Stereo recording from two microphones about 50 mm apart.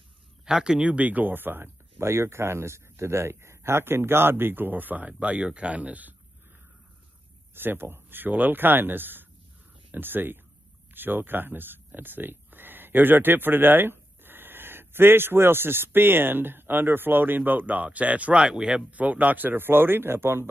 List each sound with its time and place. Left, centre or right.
0.5 s speech: centre; by 6.1 s right
7.5 s speech: right; by 18.8 s centre
18.9 s speech: right